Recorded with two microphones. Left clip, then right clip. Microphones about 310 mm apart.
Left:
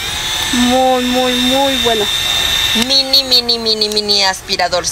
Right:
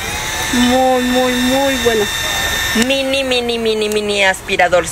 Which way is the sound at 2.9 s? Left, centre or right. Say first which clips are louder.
Left 4 dB; centre.